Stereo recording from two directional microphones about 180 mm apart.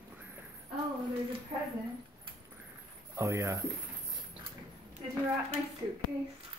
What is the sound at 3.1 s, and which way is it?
Speech, 15° right (ahead or behind).